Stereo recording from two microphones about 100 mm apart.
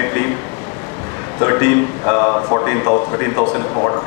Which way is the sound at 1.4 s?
25° left (ahead or behind).